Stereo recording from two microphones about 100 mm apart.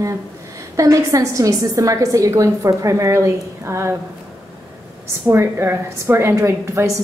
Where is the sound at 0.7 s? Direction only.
35° right (ahead or behind).